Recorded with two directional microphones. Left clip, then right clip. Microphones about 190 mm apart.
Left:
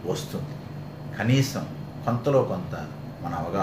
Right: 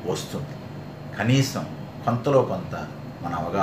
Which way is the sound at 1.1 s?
5° right (ahead or behind).